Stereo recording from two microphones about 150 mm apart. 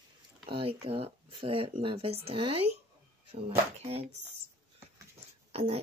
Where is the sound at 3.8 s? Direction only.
40° right (ahead or behind).